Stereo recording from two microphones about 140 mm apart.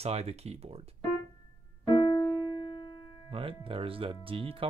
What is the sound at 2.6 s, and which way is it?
Music, 35° left (ahead or behind).